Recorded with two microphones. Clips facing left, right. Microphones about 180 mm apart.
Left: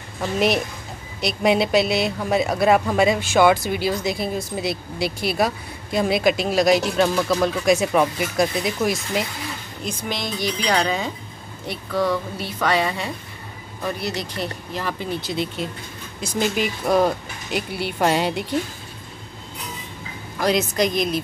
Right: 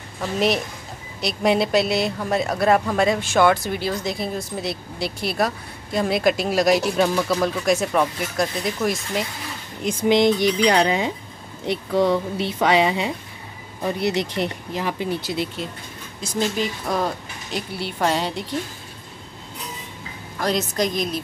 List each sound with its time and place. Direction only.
0.2 s speech: 5° left (ahead or behind)
9.8 s a woman's voice: 20° right (ahead or behind); by 18.3 s 10° left (ahead or behind)
20.3 s speech: 5° left (ahead or behind)